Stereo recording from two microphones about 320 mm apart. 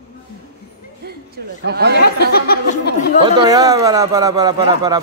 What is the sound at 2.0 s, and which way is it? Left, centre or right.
Speech, left.